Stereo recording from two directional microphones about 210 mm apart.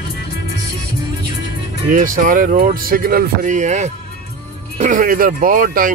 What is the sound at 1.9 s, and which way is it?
Speech, 40° right (ahead or behind).